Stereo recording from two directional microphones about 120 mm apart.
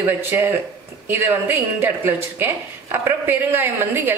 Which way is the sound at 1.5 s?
15° right (ahead or behind).